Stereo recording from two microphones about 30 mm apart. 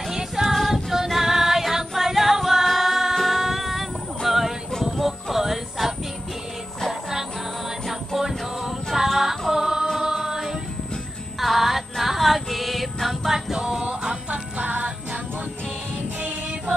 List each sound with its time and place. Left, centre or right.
0.1 s music: centre
0.6 s a capella: centre
1.6 s music: centre
4.3 s a sound: centre
4.9 s music: centre
11.3 s music: centre
13.6 s music: right
14.3 s music: right